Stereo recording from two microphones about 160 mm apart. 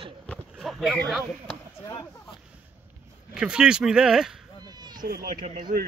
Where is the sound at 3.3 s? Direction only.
5° right (ahead or behind).